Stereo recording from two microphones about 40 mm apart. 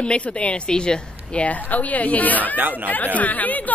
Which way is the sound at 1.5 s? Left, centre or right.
Left.